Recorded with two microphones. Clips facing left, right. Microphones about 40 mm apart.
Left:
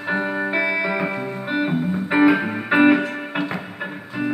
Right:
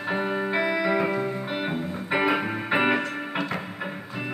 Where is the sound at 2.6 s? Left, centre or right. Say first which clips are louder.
Left 9 dB; centre.